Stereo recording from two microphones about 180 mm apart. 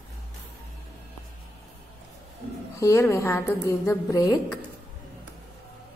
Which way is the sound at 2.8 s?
15° left (ahead or behind).